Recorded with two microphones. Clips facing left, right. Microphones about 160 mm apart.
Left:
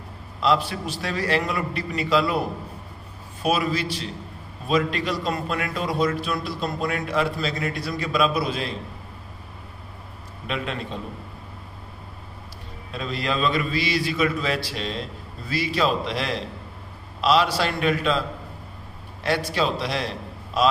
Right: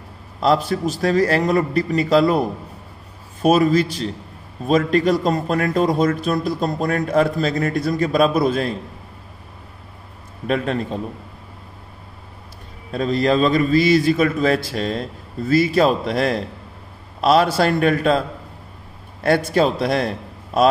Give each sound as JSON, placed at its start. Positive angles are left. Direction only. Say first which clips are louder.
{"t": 0.4, "sound": "a man's voice", "louder": "right 5 dB", "side_deg": -45}
{"t": 3.4, "sound": "a man's voice", "louder": "right 8 dB", "side_deg": -45}
{"t": 10.4, "sound": "a man's voice", "louder": "right 8 dB", "side_deg": -45}
{"t": 12.9, "sound": "a man's voice", "louder": "right 9 dB", "side_deg": -45}
{"t": 19.5, "sound": "a man's voice", "louder": "right 7 dB", "side_deg": -50}